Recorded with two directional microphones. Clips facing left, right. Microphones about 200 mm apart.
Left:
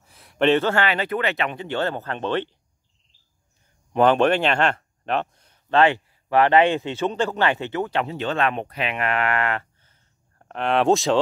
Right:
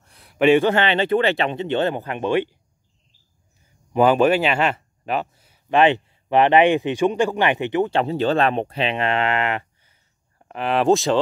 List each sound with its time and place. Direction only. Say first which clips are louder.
0.0 s speech: right 3 dB; centre (ahead or behind)
3.9 s speech: right 2 dB; 5° right (ahead or behind)
7.9 s speech: right 5 dB; 35° right (ahead or behind); by 9.9 s 15° right (ahead or behind)
10.4 s speech: right 1 dB; 5° right (ahead or behind)